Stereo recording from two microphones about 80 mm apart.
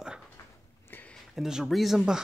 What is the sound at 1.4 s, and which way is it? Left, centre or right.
Speech, centre.